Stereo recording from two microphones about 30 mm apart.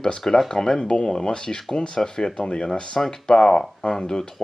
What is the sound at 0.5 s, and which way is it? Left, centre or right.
Speech, centre.